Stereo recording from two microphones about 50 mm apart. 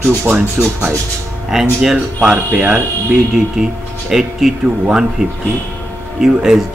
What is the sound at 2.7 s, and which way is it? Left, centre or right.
Speech, centre.